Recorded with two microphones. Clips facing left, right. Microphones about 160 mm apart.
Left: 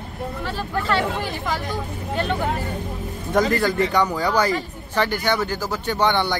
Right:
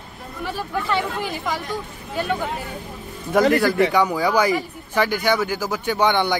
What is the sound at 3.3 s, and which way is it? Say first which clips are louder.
Speech: right 3 dB; 10° right (ahead or behind).